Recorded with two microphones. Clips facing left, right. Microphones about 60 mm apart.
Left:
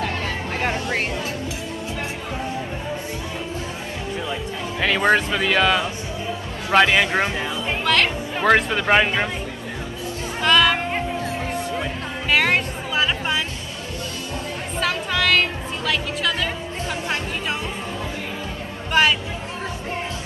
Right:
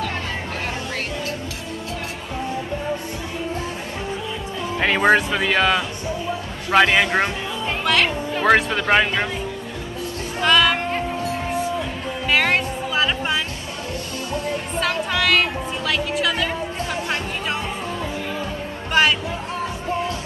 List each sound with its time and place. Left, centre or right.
0.6 s music: left
4.7 s speech: centre
5.1 s a woman's voice: centre
10.4 s a woman's voice: centre
12.3 s music: centre
14.8 s a woman's voice: centre
16.9 s music: centre
18.9 s speech: centre